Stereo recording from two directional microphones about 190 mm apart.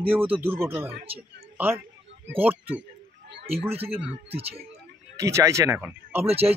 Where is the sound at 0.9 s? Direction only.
30° right (ahead or behind).